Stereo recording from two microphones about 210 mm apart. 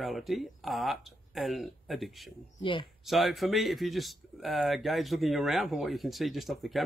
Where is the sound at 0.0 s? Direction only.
Centre (ahead or behind).